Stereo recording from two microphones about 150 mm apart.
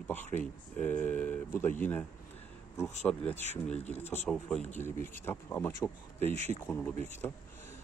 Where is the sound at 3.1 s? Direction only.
10° left (ahead or behind).